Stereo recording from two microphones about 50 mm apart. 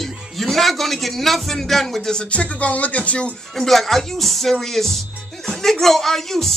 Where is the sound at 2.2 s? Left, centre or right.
Left.